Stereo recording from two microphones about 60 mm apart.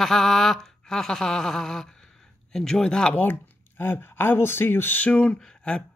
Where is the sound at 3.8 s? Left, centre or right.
Left.